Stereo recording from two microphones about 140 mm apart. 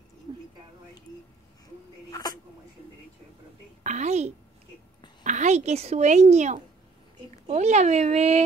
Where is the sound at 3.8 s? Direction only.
55° right (ahead or behind).